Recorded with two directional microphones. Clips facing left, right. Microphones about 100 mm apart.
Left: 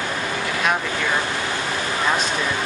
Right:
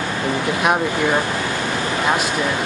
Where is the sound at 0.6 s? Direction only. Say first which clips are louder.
Right 4 dB; 20° right (ahead or behind).